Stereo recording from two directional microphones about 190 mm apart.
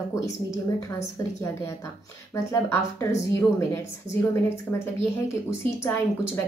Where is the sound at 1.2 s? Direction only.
15° left (ahead or behind).